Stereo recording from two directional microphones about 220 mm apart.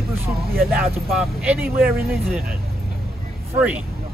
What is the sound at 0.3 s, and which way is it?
Speech, 45° right (ahead or behind).